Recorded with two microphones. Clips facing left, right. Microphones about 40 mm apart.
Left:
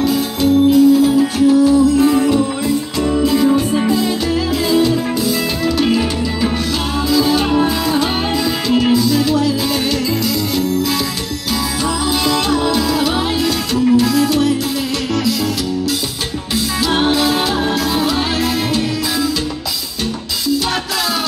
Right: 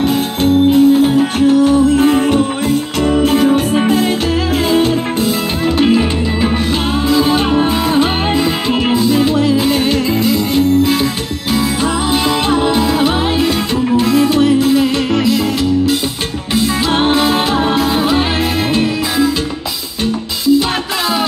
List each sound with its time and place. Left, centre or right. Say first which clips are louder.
0.7 s music: right 1 dB; right
5.8 s music: right 5 dB; right
7.2 s music: even; right
12.4 s music: right 3 dB; right
16.9 s music: right 1 dB; right